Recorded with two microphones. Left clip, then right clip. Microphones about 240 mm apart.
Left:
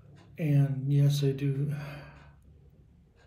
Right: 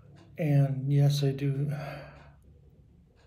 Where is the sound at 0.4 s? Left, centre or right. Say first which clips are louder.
Right 2 dB; right.